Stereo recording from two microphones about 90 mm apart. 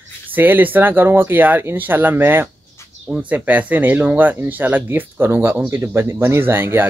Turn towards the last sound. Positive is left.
turn(degrees=-25)  # may be behind; listen again after turning